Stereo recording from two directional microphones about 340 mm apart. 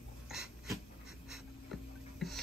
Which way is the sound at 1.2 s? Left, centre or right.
Centre.